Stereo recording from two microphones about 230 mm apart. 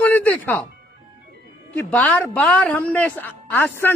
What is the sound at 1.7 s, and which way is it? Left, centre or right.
A woman's voice, centre.